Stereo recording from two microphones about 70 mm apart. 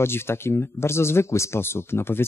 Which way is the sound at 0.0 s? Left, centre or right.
Left.